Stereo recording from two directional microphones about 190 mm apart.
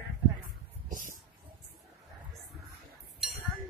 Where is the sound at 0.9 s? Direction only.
45° right (ahead or behind).